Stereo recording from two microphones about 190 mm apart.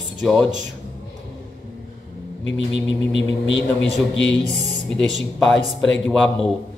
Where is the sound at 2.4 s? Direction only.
70° left (ahead or behind).